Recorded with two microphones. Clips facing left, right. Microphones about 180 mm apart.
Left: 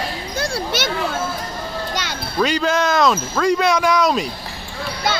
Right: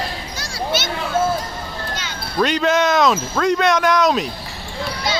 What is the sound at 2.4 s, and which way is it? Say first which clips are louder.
Speech: right 1 dB; centre (ahead or behind).